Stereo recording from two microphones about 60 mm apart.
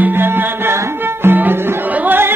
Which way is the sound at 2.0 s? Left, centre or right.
Right.